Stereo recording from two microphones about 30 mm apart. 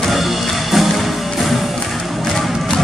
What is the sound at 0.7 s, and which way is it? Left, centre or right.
Music, centre.